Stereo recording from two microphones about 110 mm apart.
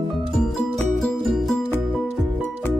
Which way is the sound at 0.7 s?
Centre (ahead or behind).